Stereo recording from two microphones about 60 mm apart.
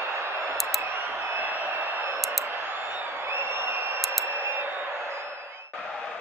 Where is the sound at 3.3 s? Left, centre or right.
Right.